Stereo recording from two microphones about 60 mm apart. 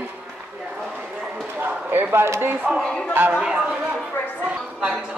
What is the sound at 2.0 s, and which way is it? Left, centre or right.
Speech, right.